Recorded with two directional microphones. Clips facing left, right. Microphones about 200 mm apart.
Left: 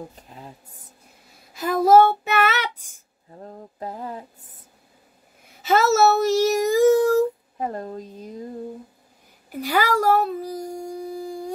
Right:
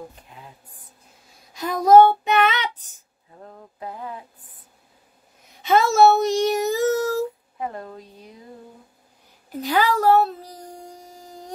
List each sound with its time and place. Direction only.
0.3 s speech: 45° left (ahead or behind)
1.5 s child singing: 5° left (ahead or behind)
3.4 s a sound: 40° left (ahead or behind)
5.6 s speech: 5° left (ahead or behind)
7.5 s speech: 40° left (ahead or behind)
9.6 s speech: 10° left (ahead or behind)